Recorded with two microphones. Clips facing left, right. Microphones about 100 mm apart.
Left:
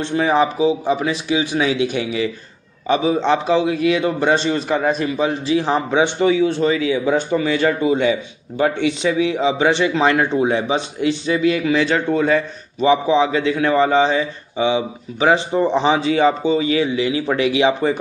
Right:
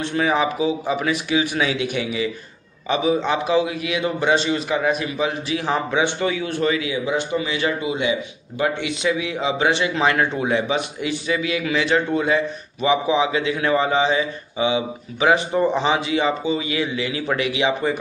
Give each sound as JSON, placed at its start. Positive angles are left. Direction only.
{"t": 0.0, "sound": "speech", "side_deg": 30}